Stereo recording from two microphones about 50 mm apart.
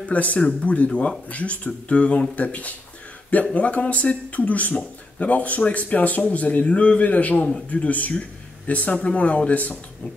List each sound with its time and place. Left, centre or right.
0.0 s speech: left